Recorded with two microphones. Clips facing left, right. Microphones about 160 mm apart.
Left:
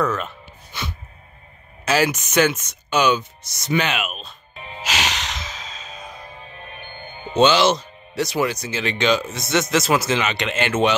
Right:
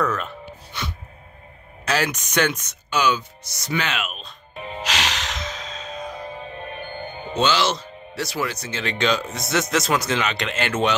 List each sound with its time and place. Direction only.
0.0 s music: centre (ahead or behind)
1.9 s speech: 5° left (ahead or behind)
2.9 s speech: 20° left (ahead or behind)
4.8 s music: centre (ahead or behind)
7.3 s speech: 20° left (ahead or behind); by 11.0 s 5° left (ahead or behind)